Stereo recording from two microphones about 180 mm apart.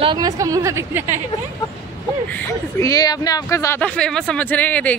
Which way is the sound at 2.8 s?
20° left (ahead or behind).